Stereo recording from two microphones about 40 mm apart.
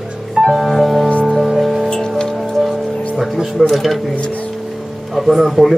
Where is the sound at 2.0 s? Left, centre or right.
Centre.